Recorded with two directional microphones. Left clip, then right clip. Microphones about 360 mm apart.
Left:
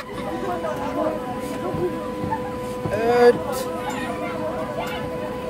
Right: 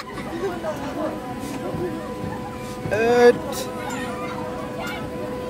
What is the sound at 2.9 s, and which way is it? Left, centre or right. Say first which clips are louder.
Boat: right 1 dB; centre.